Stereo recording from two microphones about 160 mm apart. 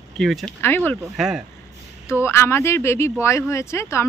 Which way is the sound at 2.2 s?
15° left (ahead or behind).